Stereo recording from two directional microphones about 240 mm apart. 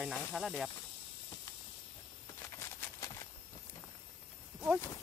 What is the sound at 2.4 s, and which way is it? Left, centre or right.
Clip-clop, centre.